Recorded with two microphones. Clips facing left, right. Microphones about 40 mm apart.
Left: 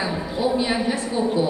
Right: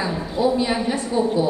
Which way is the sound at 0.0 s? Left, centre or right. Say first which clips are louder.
Even; centre.